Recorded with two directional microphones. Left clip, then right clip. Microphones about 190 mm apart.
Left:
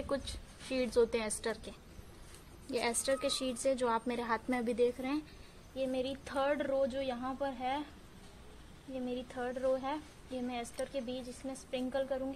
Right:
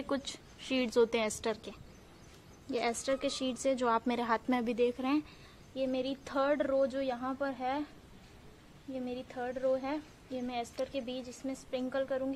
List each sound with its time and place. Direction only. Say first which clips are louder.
0.0 s a woman's voice: right 1 dB; 30° right (ahead or behind)
9.0 s a woman's voice: even; 25° right (ahead or behind)